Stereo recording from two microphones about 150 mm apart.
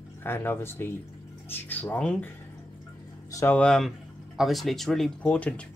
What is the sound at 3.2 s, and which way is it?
Speech, 20° left (ahead or behind).